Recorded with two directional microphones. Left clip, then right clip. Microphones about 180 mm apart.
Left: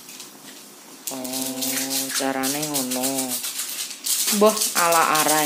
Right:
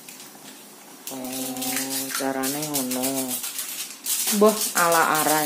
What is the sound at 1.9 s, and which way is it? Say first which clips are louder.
Music: left 2 dB; centre (ahead or behind).